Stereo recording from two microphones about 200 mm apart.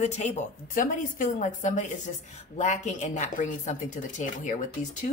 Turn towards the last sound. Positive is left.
turn(degrees=40)  # may be behind; listen again after turning